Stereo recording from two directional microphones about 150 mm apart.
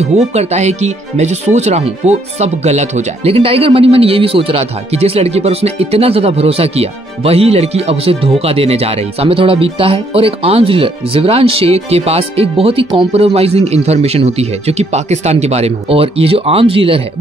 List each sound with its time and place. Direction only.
0.0 s speech: 45° right (ahead or behind)